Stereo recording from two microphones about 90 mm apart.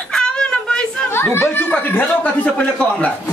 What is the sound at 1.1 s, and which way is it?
Speech, 25° left (ahead or behind).